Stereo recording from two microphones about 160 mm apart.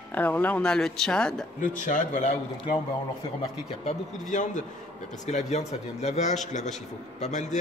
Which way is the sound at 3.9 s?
50° left (ahead or behind).